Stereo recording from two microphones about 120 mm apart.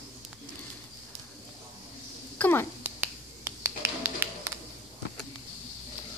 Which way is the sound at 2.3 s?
15° left (ahead or behind).